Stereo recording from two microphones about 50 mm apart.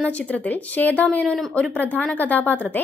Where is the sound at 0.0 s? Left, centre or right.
Left.